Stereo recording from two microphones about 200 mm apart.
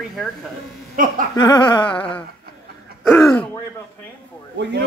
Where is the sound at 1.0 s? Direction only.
40° right (ahead or behind).